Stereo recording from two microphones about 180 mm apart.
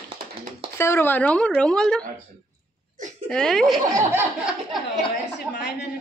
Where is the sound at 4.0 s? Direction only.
10° right (ahead or behind).